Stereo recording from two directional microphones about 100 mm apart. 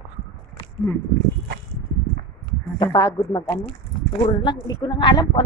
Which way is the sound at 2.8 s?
40° left (ahead or behind).